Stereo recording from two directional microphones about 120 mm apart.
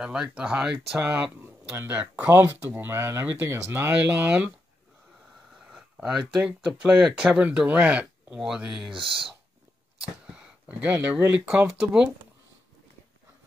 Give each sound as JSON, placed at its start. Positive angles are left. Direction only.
{"t": 0.0, "sound": "speech", "side_deg": -5}
{"t": 5.6, "sound": "speech", "side_deg": -5}
{"t": 8.9, "sound": "speech", "side_deg": -45}
{"t": 10.2, "sound": "speech", "side_deg": -5}